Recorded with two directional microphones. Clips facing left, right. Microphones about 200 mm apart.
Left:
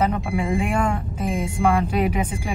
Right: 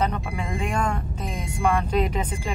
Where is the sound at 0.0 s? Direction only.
10° left (ahead or behind).